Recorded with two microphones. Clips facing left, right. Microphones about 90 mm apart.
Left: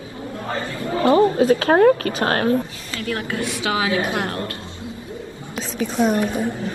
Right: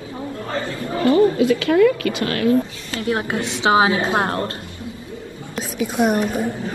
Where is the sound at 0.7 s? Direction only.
30° left (ahead or behind).